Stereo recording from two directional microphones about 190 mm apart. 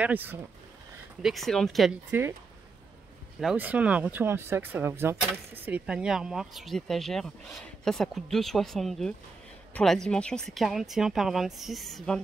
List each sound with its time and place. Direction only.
0.0 s speech: 10° right (ahead or behind)
1.2 s speech: centre (ahead or behind)
3.3 s speech: 5° right (ahead or behind)